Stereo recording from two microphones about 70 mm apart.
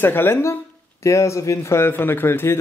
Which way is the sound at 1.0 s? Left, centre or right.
Left.